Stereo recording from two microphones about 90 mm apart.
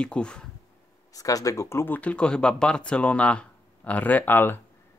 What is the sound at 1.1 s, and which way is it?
Speech, 40° left (ahead or behind).